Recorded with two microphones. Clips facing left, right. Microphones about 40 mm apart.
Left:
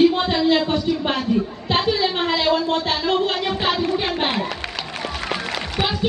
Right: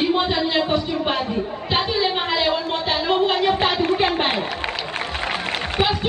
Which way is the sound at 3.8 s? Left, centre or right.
Right.